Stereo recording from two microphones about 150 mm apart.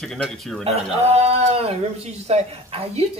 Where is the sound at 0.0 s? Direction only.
5° left (ahead or behind).